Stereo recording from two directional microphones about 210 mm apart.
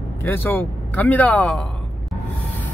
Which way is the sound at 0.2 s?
10° left (ahead or behind).